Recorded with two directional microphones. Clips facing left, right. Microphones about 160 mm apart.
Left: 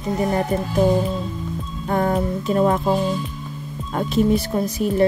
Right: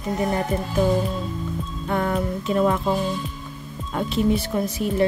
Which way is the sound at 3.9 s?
45° left (ahead or behind).